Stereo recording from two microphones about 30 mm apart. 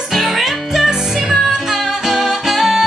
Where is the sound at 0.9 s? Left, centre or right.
Centre.